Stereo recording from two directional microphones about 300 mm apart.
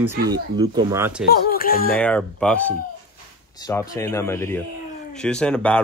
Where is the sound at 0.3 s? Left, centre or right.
Centre.